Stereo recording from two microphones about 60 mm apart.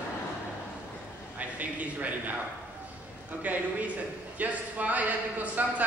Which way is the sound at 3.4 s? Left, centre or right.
Right.